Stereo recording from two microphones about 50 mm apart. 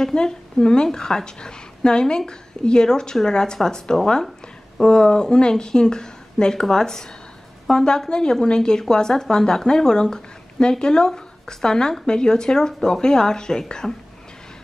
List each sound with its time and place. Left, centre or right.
0.0 s speech: centre